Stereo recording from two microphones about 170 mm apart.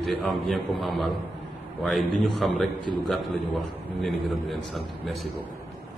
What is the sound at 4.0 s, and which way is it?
Mantra, centre (ahead or behind).